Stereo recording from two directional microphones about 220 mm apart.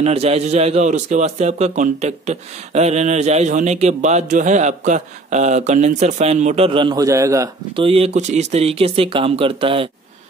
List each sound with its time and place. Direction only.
0.0 s a man's voice: 30° right (ahead or behind)
7.8 s speech: 25° right (ahead or behind)